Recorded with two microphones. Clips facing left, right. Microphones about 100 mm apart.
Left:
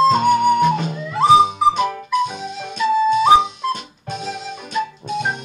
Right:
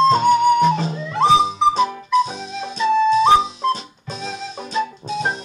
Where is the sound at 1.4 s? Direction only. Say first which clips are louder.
Even; 55° left (ahead or behind).